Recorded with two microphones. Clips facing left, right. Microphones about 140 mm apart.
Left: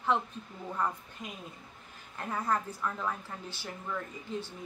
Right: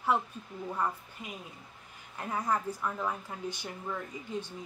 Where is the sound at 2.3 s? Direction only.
10° right (ahead or behind).